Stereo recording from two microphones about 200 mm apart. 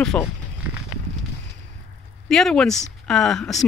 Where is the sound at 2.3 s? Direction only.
Centre (ahead or behind).